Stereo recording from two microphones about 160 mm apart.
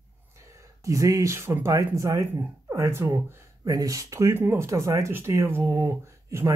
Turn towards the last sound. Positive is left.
turn(degrees=-15)  # may be behind; listen again after turning